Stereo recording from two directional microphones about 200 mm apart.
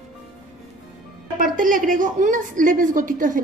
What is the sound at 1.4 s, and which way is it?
A woman's voice, 45° right (ahead or behind).